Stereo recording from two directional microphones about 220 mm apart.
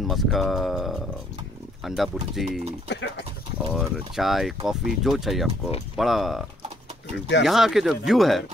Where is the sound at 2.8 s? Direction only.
50° left (ahead or behind).